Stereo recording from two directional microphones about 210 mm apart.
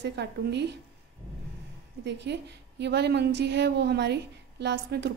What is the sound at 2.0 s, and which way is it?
A woman's voice, 55° right (ahead or behind).